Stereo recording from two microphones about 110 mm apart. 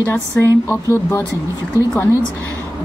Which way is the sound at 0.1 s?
20° left (ahead or behind).